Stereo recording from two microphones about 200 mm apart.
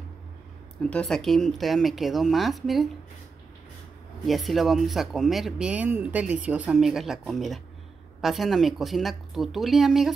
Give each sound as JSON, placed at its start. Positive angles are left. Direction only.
{"t": 0.8, "sound": "speech", "side_deg": 5}
{"t": 4.3, "sound": "speech", "side_deg": 0}